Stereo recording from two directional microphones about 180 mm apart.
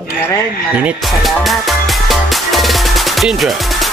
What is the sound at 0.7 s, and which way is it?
Music, 5° right (ahead or behind).